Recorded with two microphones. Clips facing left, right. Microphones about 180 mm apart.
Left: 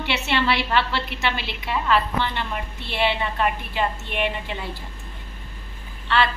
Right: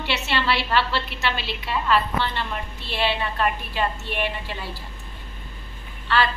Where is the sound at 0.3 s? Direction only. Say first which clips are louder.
Left 2 dB; 20° left (ahead or behind).